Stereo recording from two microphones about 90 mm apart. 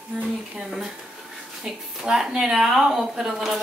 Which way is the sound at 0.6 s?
5° right (ahead or behind).